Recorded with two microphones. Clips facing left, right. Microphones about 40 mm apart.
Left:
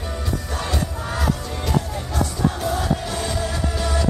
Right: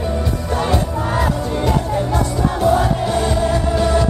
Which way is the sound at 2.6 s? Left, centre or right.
Right.